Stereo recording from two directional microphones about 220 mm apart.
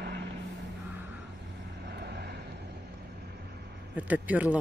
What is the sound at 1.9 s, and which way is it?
Vehicle, 50° right (ahead or behind).